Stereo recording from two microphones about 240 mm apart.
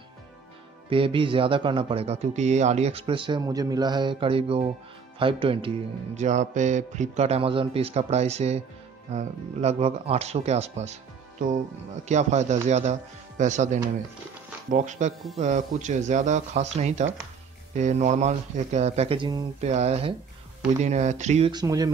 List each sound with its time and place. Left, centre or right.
0.8 s speech: right
21.5 s speech: centre